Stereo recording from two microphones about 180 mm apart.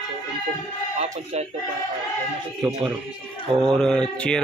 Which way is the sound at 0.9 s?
35° right (ahead or behind).